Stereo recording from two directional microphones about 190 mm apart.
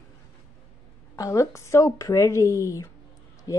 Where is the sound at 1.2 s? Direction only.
15° left (ahead or behind).